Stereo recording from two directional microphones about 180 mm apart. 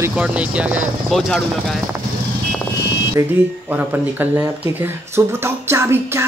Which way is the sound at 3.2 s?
15° right (ahead or behind).